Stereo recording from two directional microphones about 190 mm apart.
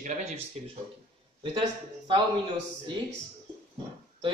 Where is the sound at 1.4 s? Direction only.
30° right (ahead or behind).